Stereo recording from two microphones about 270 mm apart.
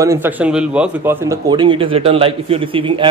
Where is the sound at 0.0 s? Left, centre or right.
Centre.